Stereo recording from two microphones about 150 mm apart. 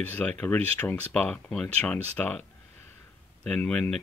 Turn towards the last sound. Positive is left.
turn(degrees=5)  # may be behind; listen again after turning